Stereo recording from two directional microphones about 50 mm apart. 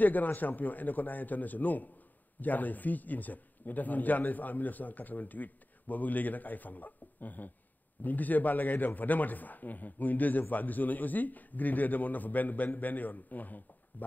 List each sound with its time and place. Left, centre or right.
0.0 s a man's voice: left